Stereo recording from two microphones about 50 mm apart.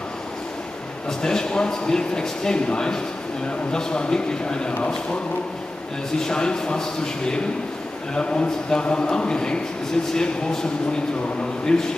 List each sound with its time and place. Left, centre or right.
1.2 s speech: centre
6.1 s a man's voice: centre